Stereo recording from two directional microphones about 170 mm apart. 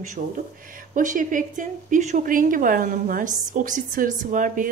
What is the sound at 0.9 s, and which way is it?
A woman's voice, 50° right (ahead or behind).